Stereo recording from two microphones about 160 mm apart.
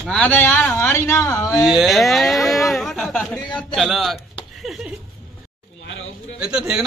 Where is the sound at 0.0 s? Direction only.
5° left (ahead or behind).